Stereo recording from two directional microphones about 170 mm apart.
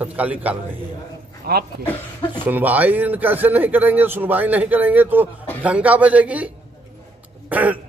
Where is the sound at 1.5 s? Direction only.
65° right (ahead or behind).